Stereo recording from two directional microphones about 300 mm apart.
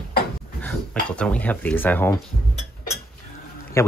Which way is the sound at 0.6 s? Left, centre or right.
Centre.